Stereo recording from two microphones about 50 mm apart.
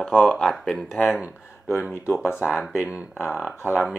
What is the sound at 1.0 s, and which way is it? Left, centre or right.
Speech, left.